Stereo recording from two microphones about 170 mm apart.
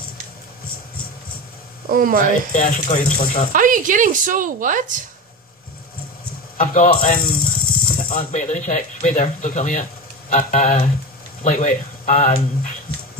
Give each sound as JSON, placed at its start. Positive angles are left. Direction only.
{"t": 1.9, "sound": "speech", "side_deg": -55}
{"t": 2.5, "sound": "speech", "side_deg": 50}
{"t": 3.5, "sound": "a woman's voice", "side_deg": -50}
{"t": 6.6, "sound": "snake", "side_deg": 50}
{"t": 8.3, "sound": "speech", "side_deg": 45}